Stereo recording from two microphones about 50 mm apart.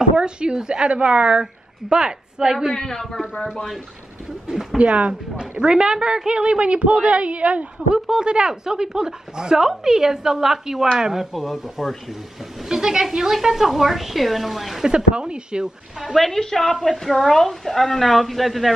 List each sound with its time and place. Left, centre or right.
0.0 s a woman's voice: centre
2.7 s a man's voice: centre
4.7 s a woman's voice: right; by 14.9 s centre
14.9 s a woman's voice: centre
16.0 s a woman's voice: centre